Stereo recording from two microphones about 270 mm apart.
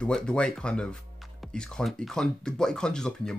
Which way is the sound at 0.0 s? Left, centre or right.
Centre.